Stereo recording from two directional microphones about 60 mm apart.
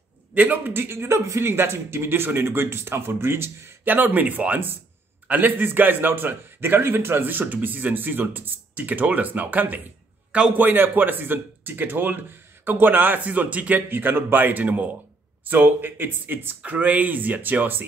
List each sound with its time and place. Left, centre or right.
0.3 s a man's voice: right
1.4 s a man's voice: right